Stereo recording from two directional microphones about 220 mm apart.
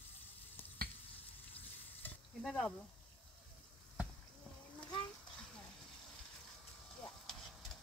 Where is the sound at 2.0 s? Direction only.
5° left (ahead or behind).